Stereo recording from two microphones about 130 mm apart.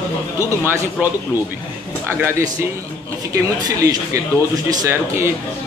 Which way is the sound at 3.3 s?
25° right (ahead or behind).